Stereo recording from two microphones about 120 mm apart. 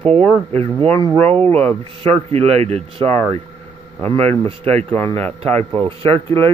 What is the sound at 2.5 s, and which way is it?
Speech, 60° right (ahead or behind).